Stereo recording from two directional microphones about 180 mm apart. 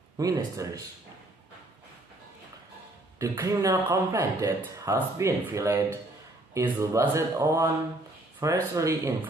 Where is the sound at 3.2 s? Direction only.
15° right (ahead or behind).